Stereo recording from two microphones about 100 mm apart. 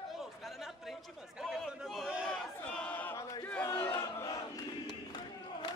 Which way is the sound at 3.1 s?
30° left (ahead or behind).